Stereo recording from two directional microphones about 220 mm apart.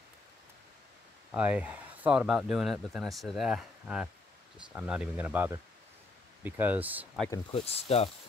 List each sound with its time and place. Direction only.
1.3 s speech: 5° right (ahead or behind)
7.2 s speech: 25° left (ahead or behind)